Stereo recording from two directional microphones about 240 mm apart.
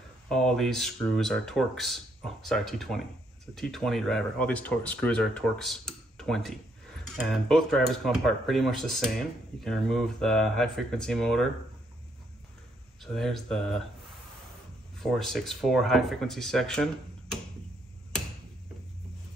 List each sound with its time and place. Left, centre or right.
0.3 s speech: centre
13.0 s speech: centre
15.0 s speech: centre